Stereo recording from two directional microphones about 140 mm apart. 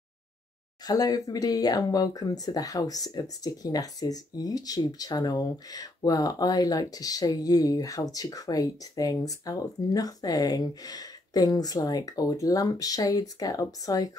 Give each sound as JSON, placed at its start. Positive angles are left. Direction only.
{"t": 0.8, "sound": "speech", "side_deg": 25}